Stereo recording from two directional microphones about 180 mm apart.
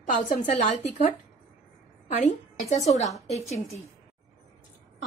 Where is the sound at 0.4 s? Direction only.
40° left (ahead or behind).